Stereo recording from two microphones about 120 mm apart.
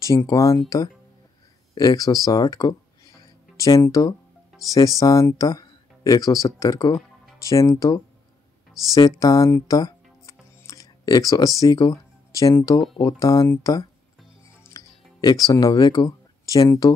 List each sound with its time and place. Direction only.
0.0 s speech: 25° left (ahead or behind)
1.8 s speech: 30° left (ahead or behind)
9.7 s music: 30° left (ahead or behind)
11.6 s speech: 30° left (ahead or behind)
14.7 s music: 35° left (ahead or behind)
15.7 s speech: 40° left (ahead or behind)